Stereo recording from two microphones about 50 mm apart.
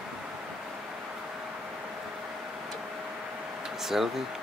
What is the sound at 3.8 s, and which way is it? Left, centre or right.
Speech, centre.